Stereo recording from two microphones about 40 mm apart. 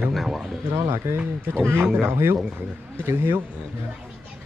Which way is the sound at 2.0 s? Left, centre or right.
Right.